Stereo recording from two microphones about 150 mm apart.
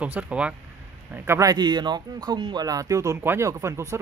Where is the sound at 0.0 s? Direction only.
10° right (ahead or behind).